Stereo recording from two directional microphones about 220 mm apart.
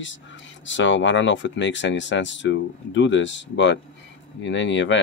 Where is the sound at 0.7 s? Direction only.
55° left (ahead or behind).